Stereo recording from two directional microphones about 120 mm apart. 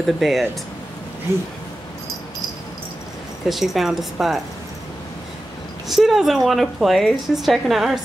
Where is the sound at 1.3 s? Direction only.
20° right (ahead or behind).